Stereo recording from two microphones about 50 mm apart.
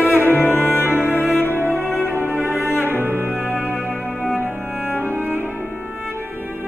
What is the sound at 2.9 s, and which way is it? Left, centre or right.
Music, right.